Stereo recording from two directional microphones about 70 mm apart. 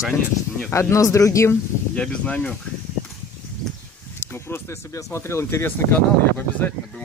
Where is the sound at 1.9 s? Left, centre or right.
Centre.